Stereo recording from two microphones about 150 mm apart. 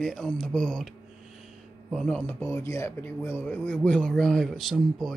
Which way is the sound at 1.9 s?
5° left (ahead or behind).